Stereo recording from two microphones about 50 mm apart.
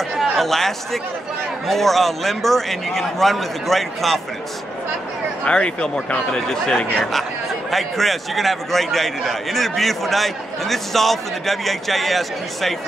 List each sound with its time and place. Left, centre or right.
0.2 s a man's voice: centre
5.4 s a man's voice: left; by 12.7 s centre